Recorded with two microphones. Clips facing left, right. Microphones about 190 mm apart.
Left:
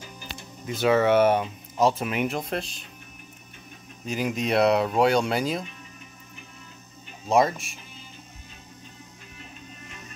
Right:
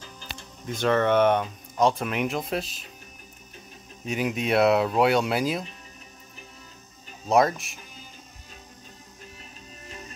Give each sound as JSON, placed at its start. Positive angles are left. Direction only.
{"t": 0.0, "sound": "speech", "side_deg": 10}
{"t": 4.0, "sound": "speech", "side_deg": 0}
{"t": 7.2, "sound": "speech", "side_deg": 0}
{"t": 9.8, "sound": "music", "side_deg": -35}